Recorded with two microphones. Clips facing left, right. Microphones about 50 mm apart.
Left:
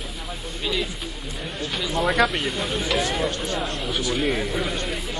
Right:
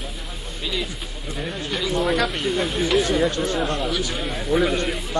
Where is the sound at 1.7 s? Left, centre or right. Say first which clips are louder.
Right 2 dB; centre.